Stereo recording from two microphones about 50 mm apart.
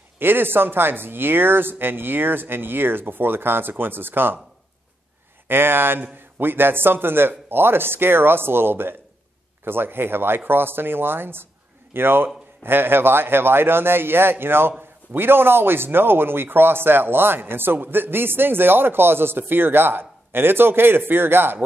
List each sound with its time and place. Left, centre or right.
0.2 s speech: right
5.5 s speech: right